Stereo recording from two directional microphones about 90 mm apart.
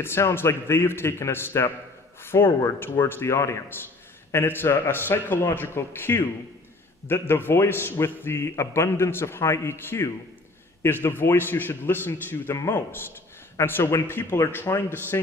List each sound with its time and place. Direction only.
0.0 s a man's voice: 30° left (ahead or behind)